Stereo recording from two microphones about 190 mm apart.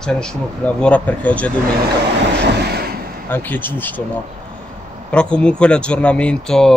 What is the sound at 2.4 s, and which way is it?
Vehicle, 55° right (ahead or behind).